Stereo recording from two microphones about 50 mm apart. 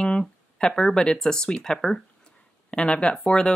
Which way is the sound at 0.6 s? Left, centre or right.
Centre.